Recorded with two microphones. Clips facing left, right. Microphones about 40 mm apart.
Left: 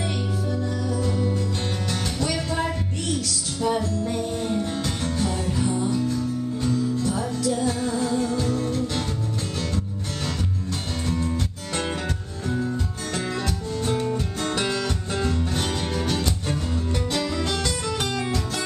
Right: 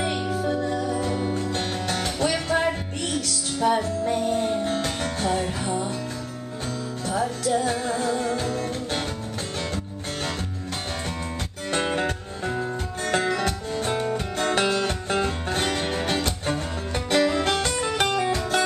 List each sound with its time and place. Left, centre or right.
0.0 s music: right
11.9 s music: right